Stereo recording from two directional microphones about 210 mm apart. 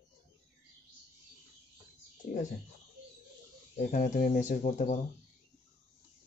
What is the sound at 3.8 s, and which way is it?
Speech, 40° left (ahead or behind).